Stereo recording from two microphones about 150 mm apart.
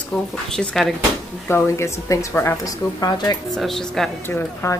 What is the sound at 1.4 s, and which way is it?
A woman's voice, 20° left (ahead or behind).